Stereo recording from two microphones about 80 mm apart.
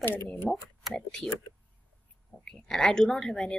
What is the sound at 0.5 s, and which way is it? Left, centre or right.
Speech, centre.